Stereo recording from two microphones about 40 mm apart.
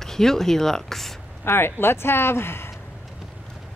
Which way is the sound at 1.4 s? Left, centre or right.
Left.